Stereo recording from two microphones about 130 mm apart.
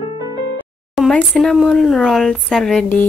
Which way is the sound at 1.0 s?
Centre (ahead or behind).